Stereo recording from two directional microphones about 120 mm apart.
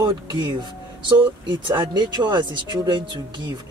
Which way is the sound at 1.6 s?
35° right (ahead or behind).